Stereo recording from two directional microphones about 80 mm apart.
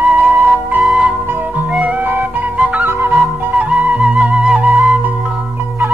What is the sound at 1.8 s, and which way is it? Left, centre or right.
Flute, right.